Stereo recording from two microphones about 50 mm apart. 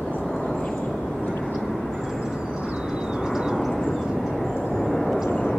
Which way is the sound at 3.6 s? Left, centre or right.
Centre.